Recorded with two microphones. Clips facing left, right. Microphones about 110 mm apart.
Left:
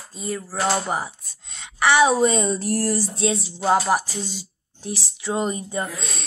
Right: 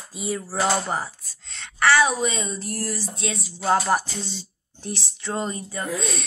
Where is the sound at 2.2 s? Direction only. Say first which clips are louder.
Left 7 dB; 45° left (ahead or behind); by 3.7 s 25° left (ahead or behind).